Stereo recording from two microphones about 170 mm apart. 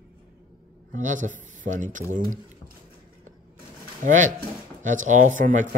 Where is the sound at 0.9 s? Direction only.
45° right (ahead or behind).